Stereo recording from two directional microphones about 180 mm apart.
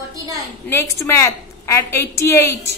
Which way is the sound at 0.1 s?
20° right (ahead or behind).